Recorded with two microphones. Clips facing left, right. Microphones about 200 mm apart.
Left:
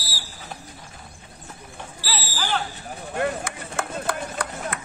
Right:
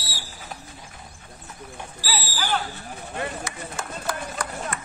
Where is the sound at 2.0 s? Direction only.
10° right (ahead or behind).